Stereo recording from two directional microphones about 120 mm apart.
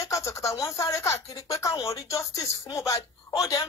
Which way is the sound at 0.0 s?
25° left (ahead or behind).